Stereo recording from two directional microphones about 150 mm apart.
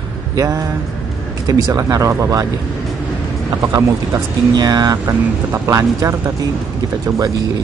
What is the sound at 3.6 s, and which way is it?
Speech, 20° right (ahead or behind).